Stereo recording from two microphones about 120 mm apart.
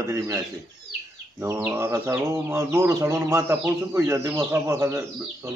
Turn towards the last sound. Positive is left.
turn(degrees=-25)  # may be behind; listen again after turning